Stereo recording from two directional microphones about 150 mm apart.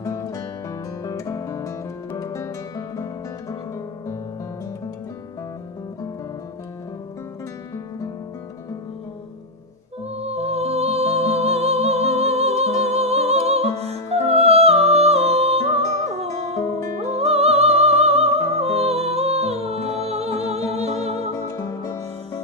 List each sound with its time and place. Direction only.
0.0 s music: 20° left (ahead or behind)
1.0 s guitar: 20° left (ahead or behind)
2.1 s music: 20° left (ahead or behind)
10.1 s music: 45° right (ahead or behind)
17.2 s music: 45° right (ahead or behind)
21.4 s music: 20° left (ahead or behind)